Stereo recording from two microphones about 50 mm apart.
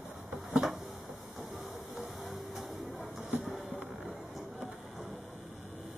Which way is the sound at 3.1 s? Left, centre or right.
Right.